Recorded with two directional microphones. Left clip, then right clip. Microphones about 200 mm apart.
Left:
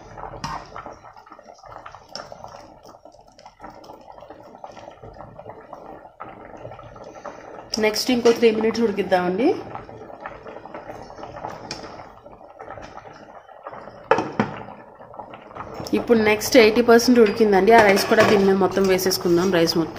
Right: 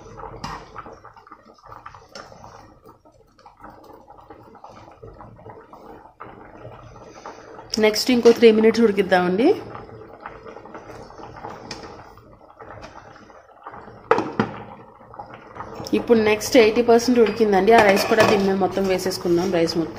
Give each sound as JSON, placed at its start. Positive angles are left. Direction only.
{"t": 7.7, "sound": "a woman's voice", "side_deg": -15}
{"t": 11.4, "sound": "a sound", "side_deg": 20}
{"t": 15.9, "sound": "a woman's voice", "side_deg": 0}